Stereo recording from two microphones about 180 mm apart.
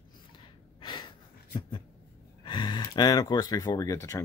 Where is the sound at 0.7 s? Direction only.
25° left (ahead or behind).